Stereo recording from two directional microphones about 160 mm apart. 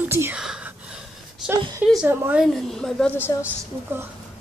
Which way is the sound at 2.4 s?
5° left (ahead or behind).